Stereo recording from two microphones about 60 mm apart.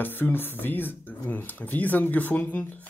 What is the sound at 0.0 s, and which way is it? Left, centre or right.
Speech, left.